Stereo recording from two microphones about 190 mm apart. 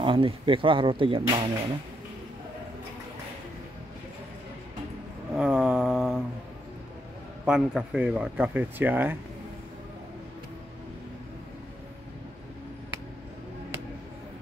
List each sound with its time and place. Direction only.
0.0 s speech: 25° right (ahead or behind)
5.3 s a sound: 5° right (ahead or behind)
7.4 s speech: 5° right (ahead or behind)